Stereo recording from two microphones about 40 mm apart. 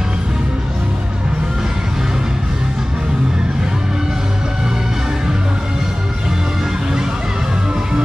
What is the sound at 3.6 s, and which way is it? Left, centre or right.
Music, centre.